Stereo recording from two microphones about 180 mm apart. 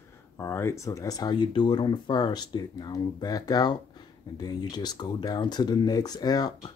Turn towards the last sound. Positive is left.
turn(degrees=20)  # may be behind; listen again after turning